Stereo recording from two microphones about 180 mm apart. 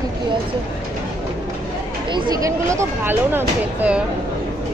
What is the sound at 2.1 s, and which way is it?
Speech, 20° right (ahead or behind).